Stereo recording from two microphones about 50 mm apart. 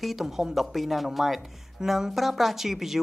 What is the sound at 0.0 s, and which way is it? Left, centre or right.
Speech, centre.